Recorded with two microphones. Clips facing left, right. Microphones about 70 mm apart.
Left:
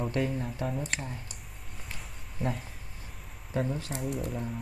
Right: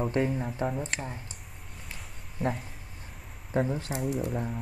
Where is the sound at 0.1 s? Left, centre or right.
Right.